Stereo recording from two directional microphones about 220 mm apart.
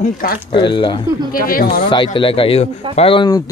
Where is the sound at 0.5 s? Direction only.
20° left (ahead or behind).